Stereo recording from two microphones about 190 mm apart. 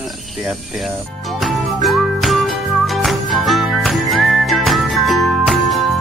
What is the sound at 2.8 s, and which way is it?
Whistling, centre (ahead or behind).